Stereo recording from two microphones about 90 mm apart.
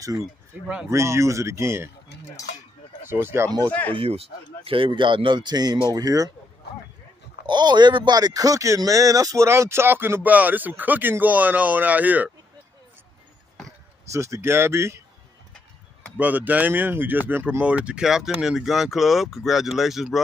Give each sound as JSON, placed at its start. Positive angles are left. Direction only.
{"t": 0.5, "sound": "speech", "side_deg": -15}
{"t": 0.8, "sound": "speech", "side_deg": -30}
{"t": 3.1, "sound": "speech", "side_deg": -25}
{"t": 3.9, "sound": "speech", "side_deg": -85}
{"t": 7.4, "sound": "speech", "side_deg": -55}
{"t": 14.1, "sound": "speech", "side_deg": -35}
{"t": 16.2, "sound": "speech", "side_deg": -20}